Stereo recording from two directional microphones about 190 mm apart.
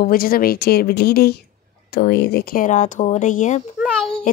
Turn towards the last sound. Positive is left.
turn(degrees=5)  # may be behind; listen again after turning